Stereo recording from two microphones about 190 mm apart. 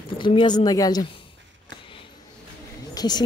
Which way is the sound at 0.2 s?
25° left (ahead or behind).